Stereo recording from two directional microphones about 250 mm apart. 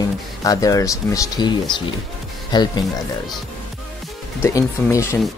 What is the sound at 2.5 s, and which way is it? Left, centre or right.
Speech, centre.